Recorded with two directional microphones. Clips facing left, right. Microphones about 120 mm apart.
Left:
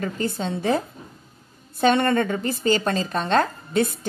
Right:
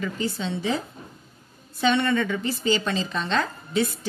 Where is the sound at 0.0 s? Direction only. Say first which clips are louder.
Left 2 dB; 45° left (ahead or behind).